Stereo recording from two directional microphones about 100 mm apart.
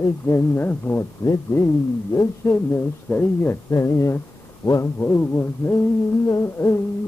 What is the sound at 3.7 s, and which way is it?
Speech, 30° left (ahead or behind).